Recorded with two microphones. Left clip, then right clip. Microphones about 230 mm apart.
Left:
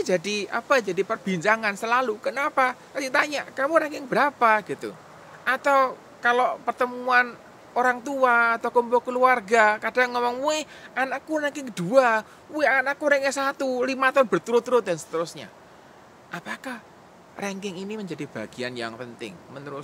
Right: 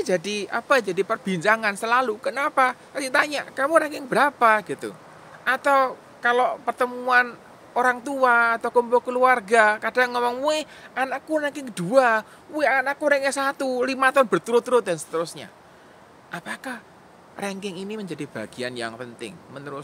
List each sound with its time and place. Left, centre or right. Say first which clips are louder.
0.0 s speech: even; centre